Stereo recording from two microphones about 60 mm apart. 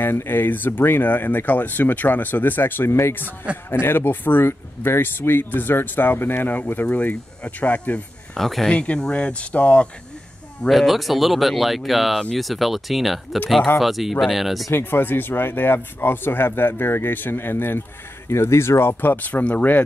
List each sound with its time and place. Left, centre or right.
0.0 s speech: left
6.9 s speech: left
8.4 s speech: centre
8.6 s speech: centre
10.7 s speech: centre
14.7 s speech: left
18.3 s speech: left